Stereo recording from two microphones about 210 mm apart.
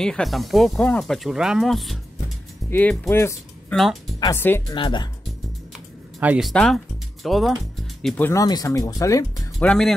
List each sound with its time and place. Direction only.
0.0 s speech: centre (ahead or behind)
3.7 s speech: centre (ahead or behind)
4.2 s speech: 10° left (ahead or behind)
4.7 s speech: 25° left (ahead or behind)
6.1 s speech: 5° right (ahead or behind)
6.5 s speech: 5° left (ahead or behind)
9.7 s speech: centre (ahead or behind)